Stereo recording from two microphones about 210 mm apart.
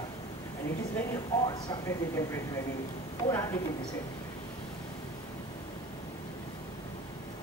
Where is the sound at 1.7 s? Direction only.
15° left (ahead or behind).